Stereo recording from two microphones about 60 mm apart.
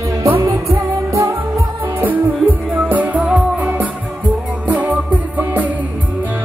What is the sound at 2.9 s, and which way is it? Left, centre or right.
Music, right.